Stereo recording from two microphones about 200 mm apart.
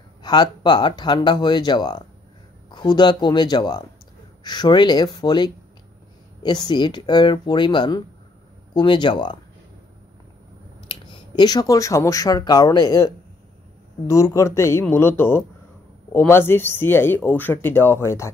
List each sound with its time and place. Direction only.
0.2 s speech: 20° left (ahead or behind)
10.9 s speech: 25° left (ahead or behind)